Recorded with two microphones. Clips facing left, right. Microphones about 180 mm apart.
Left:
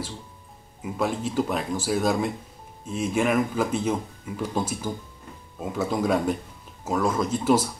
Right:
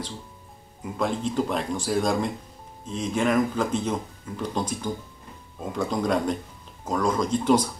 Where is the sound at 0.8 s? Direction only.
5° left (ahead or behind).